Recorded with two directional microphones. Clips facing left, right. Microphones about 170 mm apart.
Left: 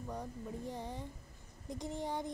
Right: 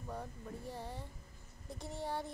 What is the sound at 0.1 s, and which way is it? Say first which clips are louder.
A woman's voice: left 1 dB; 15° left (ahead or behind).